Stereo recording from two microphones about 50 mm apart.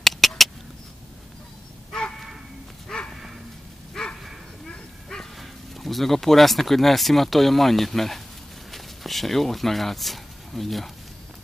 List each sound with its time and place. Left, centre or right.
0.0 s rodents: centre
1.9 s a sound: centre
2.9 s bow-wow: centre
5.4 s speech: centre